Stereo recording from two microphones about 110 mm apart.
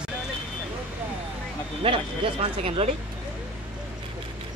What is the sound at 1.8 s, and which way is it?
Speech, 55° right (ahead or behind).